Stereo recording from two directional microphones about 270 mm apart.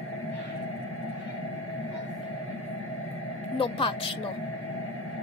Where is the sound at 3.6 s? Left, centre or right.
Centre.